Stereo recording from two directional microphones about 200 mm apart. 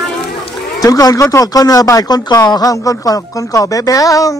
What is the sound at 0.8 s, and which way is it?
Speech, 15° left (ahead or behind).